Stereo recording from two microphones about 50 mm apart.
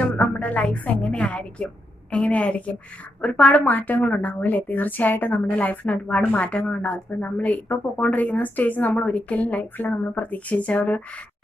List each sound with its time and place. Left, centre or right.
0.0 s a woman's voice: left
3.6 s a woman's voice: left